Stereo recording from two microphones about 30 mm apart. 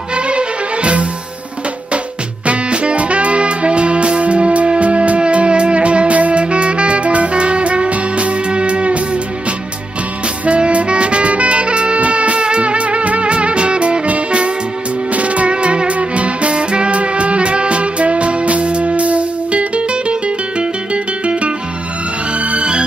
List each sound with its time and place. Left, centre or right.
0.1 s music: right
2.4 s music: right
10.4 s music: right